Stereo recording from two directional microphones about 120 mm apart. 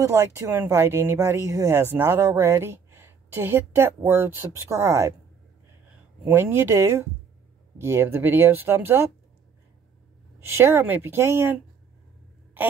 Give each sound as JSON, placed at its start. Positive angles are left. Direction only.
{"t": 0.0, "sound": "speech", "side_deg": -25}
{"t": 6.2, "sound": "speech", "side_deg": -15}
{"t": 10.4, "sound": "speech", "side_deg": -20}